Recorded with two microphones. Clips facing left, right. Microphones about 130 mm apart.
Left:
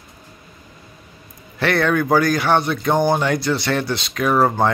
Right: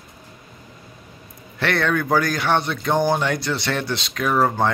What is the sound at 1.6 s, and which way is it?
Speech, 5° left (ahead or behind).